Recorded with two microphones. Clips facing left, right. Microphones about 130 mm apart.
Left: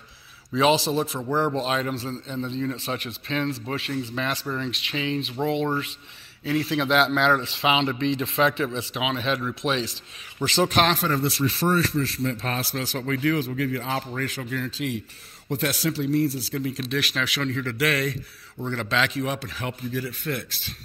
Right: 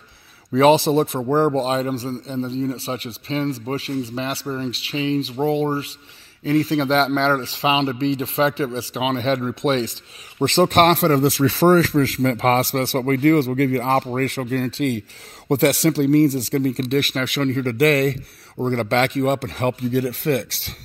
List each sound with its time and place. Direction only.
0.5 s a man's voice: 50° right (ahead or behind)
1.3 s a man's voice: 45° right (ahead or behind); by 16.6 s 90° right
16.6 s a man's voice: 55° right (ahead or behind); by 20.7 s 70° right (ahead or behind)